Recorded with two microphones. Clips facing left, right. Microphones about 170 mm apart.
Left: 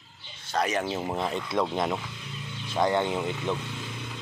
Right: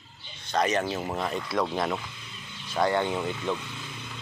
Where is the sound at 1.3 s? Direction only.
20° left (ahead or behind).